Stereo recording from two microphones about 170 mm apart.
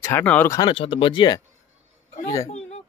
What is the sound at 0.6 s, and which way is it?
Speech, 30° left (ahead or behind).